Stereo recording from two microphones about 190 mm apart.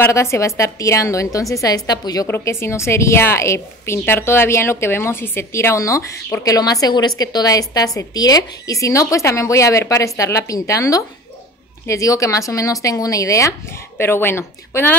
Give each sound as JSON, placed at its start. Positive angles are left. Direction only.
{"t": 0.0, "sound": "a woman's voice", "side_deg": 15}